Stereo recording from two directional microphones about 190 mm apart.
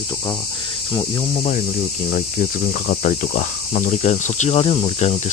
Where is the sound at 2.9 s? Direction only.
40° left (ahead or behind).